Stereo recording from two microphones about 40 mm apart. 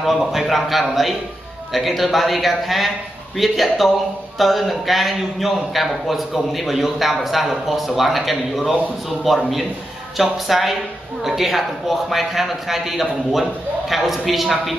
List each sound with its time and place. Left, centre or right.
0.0 s a man's voice: centre